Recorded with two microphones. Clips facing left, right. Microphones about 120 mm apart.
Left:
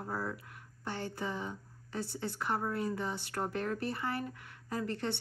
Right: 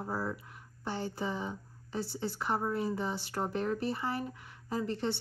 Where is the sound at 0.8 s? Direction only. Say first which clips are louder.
Right 2 dB; 30° right (ahead or behind).